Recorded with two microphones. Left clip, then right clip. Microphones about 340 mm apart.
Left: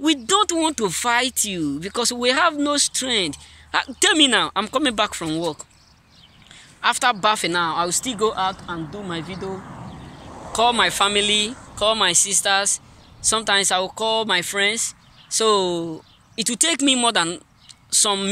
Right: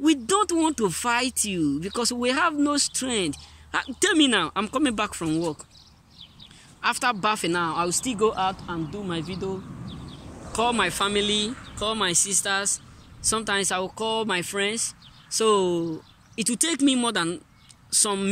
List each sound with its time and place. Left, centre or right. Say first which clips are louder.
0.0 s speech: left 3 dB; centre
6.8 s speech: left 5 dB; centre
10.2 s a sound: left 6 dB; left
10.5 s speech: left 6 dB; centre